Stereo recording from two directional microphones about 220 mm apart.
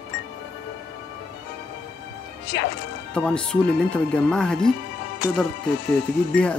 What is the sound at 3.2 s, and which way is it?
Speech, 5° left (ahead or behind).